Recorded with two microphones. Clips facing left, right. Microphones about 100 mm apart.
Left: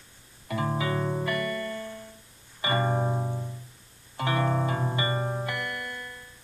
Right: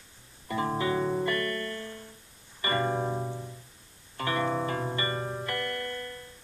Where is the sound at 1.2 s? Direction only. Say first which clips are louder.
Left 1 dB; 15° left (ahead or behind).